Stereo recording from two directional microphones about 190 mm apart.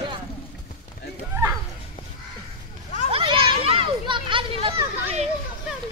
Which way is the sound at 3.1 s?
25° right (ahead or behind).